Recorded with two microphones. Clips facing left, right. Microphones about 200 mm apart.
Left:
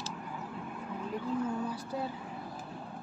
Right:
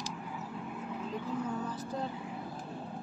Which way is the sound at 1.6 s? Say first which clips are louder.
Left 1 dB; 10° left (ahead or behind).